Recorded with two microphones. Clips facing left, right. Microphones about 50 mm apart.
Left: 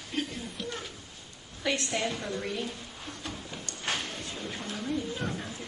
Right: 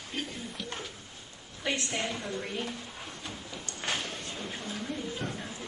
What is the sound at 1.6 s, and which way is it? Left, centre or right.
Speech, right.